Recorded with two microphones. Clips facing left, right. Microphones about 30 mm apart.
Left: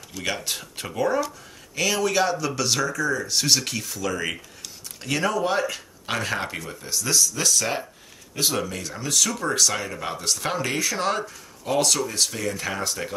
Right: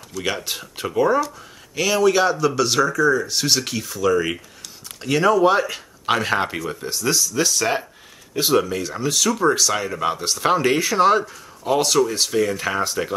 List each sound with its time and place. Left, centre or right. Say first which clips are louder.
0.2 s speech: right 3 dB; centre
5.4 s speech: right 7 dB; centre